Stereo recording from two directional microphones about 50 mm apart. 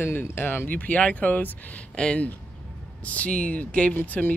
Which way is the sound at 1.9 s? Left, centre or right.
Centre.